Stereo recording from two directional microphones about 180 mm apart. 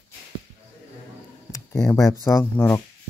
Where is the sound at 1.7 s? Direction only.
Centre (ahead or behind).